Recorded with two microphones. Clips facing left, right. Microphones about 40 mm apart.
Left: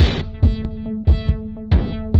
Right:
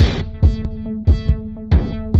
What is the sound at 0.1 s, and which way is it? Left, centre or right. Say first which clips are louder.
Music: even; left.